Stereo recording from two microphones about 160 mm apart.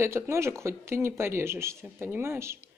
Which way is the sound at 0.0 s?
15° right (ahead or behind).